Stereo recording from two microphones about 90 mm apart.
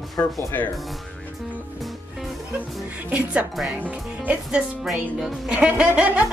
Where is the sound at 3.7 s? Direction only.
15° right (ahead or behind).